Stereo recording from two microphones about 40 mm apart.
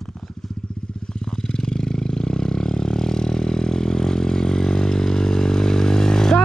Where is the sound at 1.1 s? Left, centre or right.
Centre.